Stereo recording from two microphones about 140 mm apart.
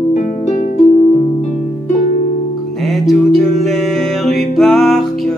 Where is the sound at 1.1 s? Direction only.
40° left (ahead or behind).